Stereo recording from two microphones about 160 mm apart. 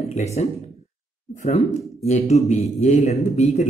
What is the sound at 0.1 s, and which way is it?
Speech, 45° left (ahead or behind).